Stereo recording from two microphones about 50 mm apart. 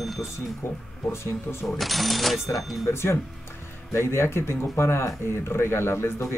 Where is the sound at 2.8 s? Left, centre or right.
Left.